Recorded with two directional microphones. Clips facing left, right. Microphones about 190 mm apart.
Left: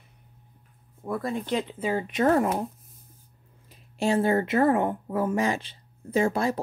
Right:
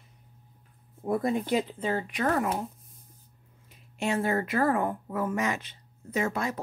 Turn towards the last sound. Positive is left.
turn(degrees=30)  # may be behind; listen again after turning